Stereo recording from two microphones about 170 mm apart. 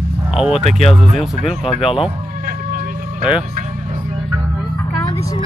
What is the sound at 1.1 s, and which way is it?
Speech, centre (ahead or behind).